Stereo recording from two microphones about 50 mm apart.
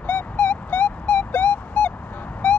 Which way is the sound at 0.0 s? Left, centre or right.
Left.